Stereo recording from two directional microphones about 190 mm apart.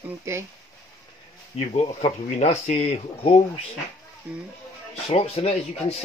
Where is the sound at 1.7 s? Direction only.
35° left (ahead or behind).